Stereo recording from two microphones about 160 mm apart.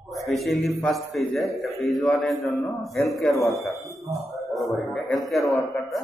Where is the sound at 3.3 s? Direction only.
20° left (ahead or behind).